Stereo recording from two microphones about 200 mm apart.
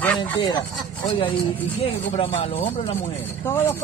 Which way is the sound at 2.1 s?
30° left (ahead or behind).